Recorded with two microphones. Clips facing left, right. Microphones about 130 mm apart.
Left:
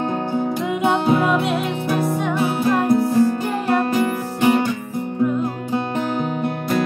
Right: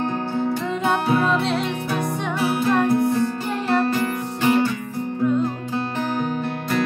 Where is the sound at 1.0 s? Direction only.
15° left (ahead or behind).